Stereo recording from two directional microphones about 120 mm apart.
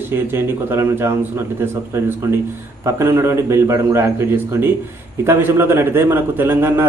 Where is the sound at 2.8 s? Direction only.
20° right (ahead or behind).